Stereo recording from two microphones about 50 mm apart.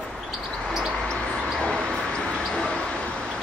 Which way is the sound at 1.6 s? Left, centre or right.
Centre.